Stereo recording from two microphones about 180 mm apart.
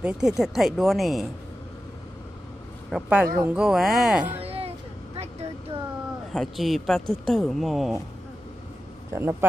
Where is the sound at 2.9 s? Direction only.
10° right (ahead or behind).